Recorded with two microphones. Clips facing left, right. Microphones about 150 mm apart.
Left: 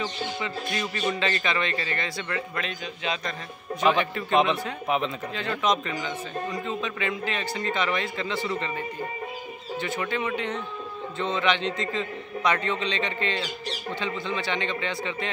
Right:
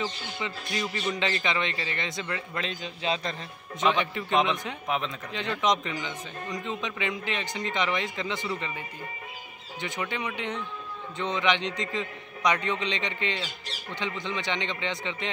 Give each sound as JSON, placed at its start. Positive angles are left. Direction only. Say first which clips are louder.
{"t": 0.0, "sound": "a man's voice", "louder": "left 3 dB", "side_deg": -15}
{"t": 4.3, "sound": "speech", "louder": "left 3 dB", "side_deg": 5}
{"t": 5.6, "sound": "a man's voice", "louder": "left 1 dB", "side_deg": -20}